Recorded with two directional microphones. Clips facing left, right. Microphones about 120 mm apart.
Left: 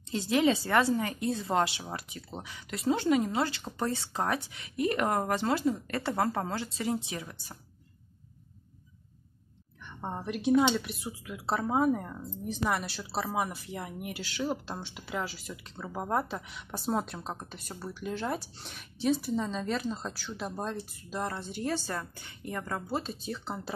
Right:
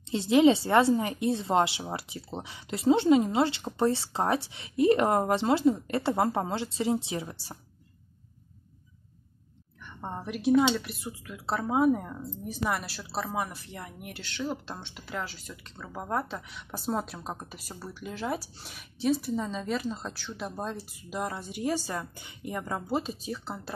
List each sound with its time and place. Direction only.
0.1 s a woman's voice: 25° right (ahead or behind)
9.8 s speech: centre (ahead or behind)